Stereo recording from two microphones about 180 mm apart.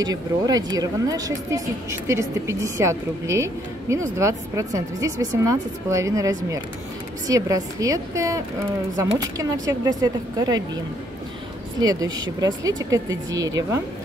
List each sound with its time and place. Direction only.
0.1 s speech: 20° right (ahead or behind)
11.8 s speech: 20° right (ahead or behind)